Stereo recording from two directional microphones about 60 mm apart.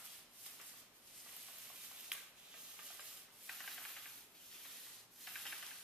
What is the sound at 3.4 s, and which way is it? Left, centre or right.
Rub, centre.